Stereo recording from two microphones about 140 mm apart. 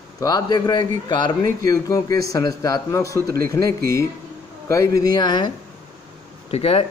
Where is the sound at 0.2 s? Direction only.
30° left (ahead or behind).